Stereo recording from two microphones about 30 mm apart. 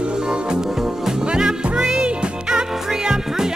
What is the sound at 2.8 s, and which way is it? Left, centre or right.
Music, centre.